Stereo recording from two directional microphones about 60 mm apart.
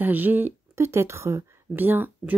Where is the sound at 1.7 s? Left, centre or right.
Right.